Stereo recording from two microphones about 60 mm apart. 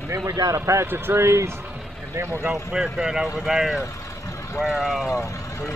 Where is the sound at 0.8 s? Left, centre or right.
Right.